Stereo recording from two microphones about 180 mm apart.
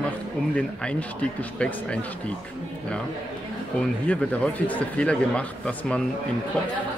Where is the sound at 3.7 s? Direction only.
5° left (ahead or behind).